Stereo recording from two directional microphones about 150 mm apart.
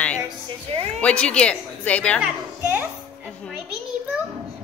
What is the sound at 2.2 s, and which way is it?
Speech, 10° right (ahead or behind).